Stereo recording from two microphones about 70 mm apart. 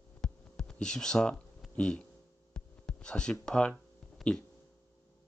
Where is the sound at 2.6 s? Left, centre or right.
Centre.